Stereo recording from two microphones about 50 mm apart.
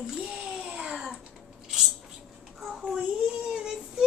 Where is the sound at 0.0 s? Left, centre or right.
Centre.